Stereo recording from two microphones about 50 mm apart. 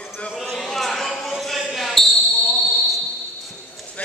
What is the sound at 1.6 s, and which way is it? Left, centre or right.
Basketball bounce, centre.